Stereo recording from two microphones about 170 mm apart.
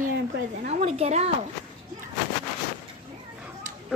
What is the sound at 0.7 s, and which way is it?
Speech, 40° right (ahead or behind).